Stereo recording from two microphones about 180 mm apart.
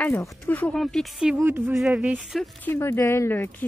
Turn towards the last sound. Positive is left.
turn(degrees=10)  # may be behind; listen again after turning